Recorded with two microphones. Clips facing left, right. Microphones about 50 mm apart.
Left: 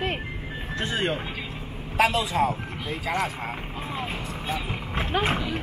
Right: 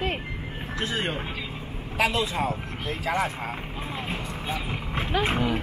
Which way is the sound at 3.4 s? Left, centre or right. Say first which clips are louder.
Even; centre.